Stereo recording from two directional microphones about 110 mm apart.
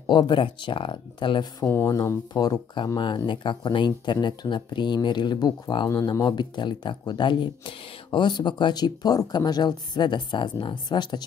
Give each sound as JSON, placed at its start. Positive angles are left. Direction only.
{"t": 0.0, "sound": "speech", "side_deg": 45}
{"t": 1.7, "sound": "speech", "side_deg": 20}
{"t": 2.0, "sound": "speech", "side_deg": 35}